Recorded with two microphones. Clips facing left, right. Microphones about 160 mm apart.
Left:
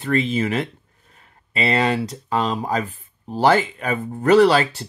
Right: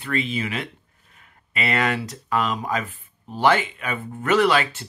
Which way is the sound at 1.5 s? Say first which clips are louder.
Left 4 dB; 30° left (ahead or behind).